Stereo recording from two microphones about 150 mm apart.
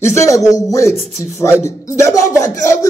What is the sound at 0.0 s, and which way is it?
Speech, 20° left (ahead or behind).